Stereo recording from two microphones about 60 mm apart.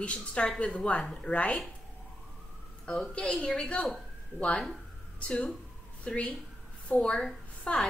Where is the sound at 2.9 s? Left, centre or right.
Centre.